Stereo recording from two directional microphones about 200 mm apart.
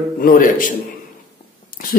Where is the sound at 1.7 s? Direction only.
45° left (ahead or behind).